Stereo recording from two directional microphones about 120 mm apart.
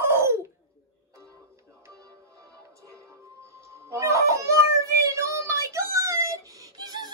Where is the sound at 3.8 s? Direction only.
25° right (ahead or behind).